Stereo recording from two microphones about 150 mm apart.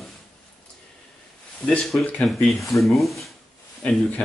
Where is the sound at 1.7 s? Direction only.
Centre (ahead or behind).